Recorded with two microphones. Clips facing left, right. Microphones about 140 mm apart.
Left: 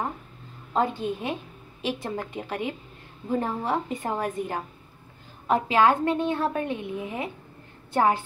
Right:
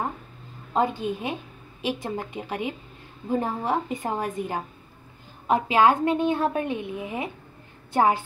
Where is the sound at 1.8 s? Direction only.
10° right (ahead or behind).